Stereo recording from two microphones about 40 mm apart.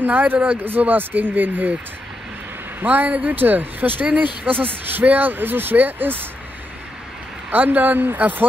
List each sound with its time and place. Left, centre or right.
0.0 s speech: right
2.8 s speech: right
7.5 s speech: right